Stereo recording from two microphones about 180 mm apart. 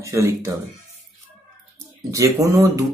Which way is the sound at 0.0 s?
15° right (ahead or behind).